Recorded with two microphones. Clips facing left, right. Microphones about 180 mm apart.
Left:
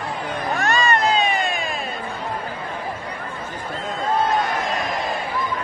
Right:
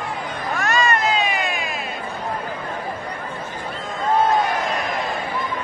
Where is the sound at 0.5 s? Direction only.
30° left (ahead or behind).